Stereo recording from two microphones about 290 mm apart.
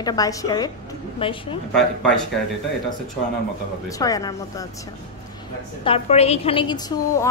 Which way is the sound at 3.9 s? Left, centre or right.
Centre.